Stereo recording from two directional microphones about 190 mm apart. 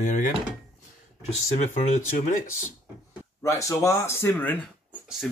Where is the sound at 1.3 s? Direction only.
35° left (ahead or behind).